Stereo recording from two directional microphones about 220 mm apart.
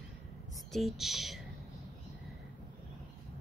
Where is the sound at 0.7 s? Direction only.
Centre (ahead or behind).